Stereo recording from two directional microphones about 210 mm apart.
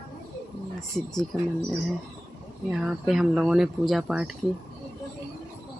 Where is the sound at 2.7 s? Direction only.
Centre (ahead or behind).